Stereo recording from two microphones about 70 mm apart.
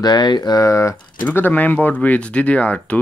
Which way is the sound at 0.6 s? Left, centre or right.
Left.